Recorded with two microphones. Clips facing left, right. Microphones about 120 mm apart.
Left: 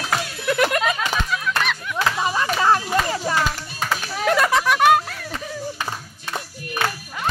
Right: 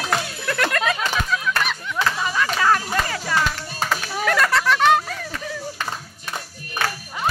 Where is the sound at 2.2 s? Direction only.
25° left (ahead or behind); by 5.2 s 10° left (ahead or behind).